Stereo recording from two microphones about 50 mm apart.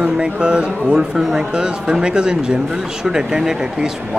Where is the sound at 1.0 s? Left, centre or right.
Centre.